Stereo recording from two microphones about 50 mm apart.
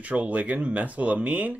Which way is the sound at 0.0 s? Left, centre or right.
Right.